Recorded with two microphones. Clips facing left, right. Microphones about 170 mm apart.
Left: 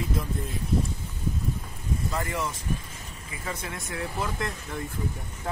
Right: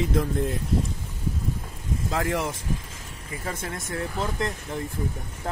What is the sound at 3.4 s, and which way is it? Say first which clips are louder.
Speech: right 2 dB; 45° right (ahead or behind).